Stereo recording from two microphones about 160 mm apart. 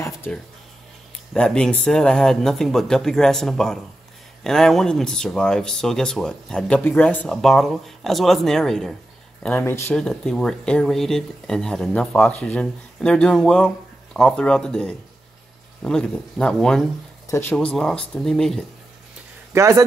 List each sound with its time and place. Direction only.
1.3 s speech: 5° left (ahead or behind)
9.4 s speech: 15° left (ahead or behind)
9.9 s speech: 5° left (ahead or behind)
19.5 s speech: 20° right (ahead or behind)